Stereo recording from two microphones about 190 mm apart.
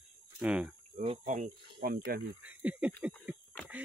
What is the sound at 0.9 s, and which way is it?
Speech, 40° right (ahead or behind).